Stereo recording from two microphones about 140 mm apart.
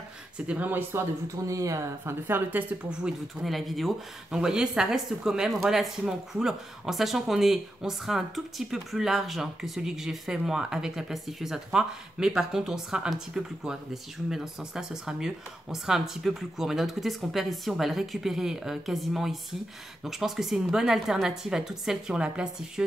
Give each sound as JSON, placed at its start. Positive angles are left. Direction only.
{"t": 0.5, "sound": "speech", "side_deg": -15}